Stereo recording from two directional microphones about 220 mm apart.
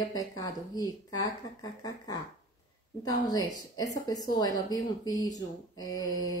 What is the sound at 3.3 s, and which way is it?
Speech, 15° left (ahead or behind).